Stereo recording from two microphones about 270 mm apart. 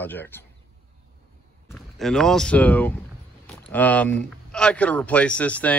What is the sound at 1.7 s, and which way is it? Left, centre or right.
A man's voice, centre.